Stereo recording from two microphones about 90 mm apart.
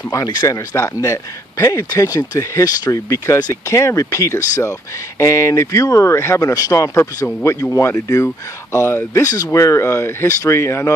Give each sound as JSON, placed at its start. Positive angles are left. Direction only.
{"t": 0.1, "sound": "speech", "side_deg": 45}